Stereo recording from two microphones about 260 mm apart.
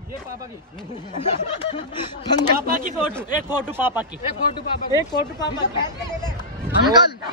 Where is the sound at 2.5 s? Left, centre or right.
Right.